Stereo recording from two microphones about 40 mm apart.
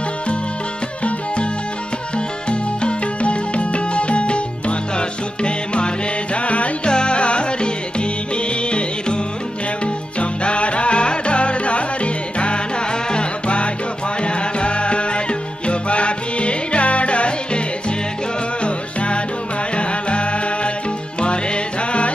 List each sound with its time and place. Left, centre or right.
1.0 s music: left